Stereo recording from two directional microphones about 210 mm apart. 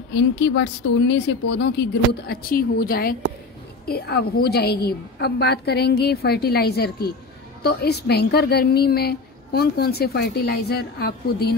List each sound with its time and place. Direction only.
0.1 s a woman's voice: 60° left (ahead or behind)